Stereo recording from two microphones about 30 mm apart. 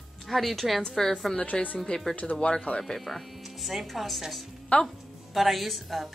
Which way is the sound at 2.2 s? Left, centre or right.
Centre.